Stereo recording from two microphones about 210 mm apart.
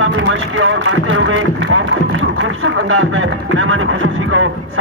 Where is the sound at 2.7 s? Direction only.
70° right (ahead or behind).